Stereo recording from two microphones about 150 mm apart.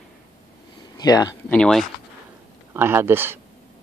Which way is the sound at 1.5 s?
5° left (ahead or behind).